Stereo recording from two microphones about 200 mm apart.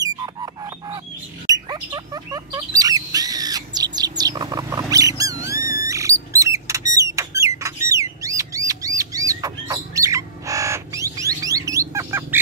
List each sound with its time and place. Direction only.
0.0 s bird: 20° right (ahead or behind)
5.9 s mouse: 15° right (ahead or behind)
6.3 s rodents: 15° right (ahead or behind)
7.9 s bird: 15° right (ahead or behind)